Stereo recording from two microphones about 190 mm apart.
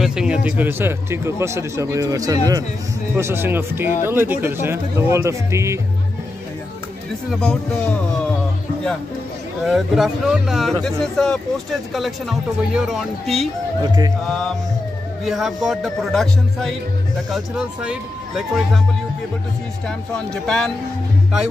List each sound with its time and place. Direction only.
0.0 s speech: 5° right (ahead or behind)
7.3 s speech: 5° left (ahead or behind)
9.7 s speech: centre (ahead or behind)
13.8 s speech: 20° right (ahead or behind)
14.2 s speech: 5° left (ahead or behind)
20.2 s speech: 5° left (ahead or behind)